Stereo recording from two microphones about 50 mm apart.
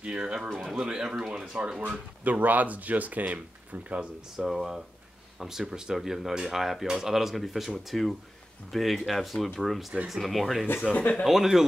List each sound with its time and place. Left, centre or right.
0.2 s speech: centre
1.8 s speech: right
4.5 s speech: centre
10.9 s speech: left
11.2 s speech: centre